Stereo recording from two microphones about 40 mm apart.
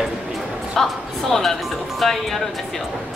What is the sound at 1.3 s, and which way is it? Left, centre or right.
A woman's voice, centre.